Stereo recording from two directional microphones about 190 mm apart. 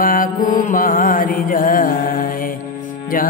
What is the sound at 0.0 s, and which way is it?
Mantra, 45° left (ahead or behind).